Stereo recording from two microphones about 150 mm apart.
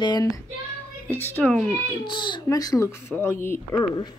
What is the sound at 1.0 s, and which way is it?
Speech, 15° left (ahead or behind).